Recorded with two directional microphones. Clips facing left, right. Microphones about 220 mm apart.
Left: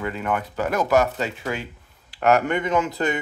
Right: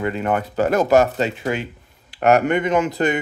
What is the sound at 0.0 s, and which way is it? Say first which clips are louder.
Speech: right 5 dB; 25° right (ahead or behind).